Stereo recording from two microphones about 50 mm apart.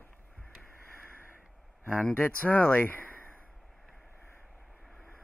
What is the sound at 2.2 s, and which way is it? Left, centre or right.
Speech, left.